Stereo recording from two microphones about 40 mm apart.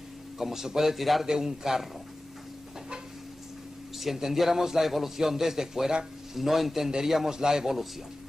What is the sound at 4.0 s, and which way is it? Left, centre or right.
A man's voice, centre.